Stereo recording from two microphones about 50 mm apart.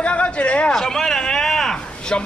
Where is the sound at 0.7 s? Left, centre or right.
Centre.